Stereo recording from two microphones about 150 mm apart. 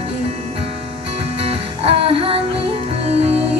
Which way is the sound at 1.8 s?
40° right (ahead or behind).